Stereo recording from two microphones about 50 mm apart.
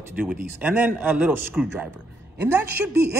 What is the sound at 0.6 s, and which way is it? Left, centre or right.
Speech, right.